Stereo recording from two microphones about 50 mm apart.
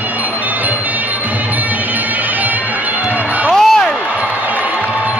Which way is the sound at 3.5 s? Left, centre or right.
Centre.